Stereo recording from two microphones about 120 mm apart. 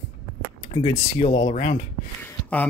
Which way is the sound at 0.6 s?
45° left (ahead or behind).